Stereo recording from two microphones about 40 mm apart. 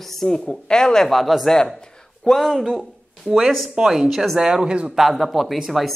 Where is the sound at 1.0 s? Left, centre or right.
Centre.